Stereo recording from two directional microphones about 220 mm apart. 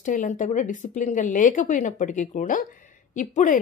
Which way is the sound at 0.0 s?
35° left (ahead or behind).